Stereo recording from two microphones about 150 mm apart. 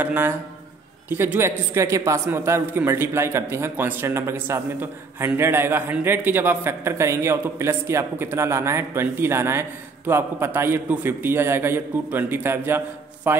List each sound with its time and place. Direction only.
0.0 s a man's voice: 10° right (ahead or behind)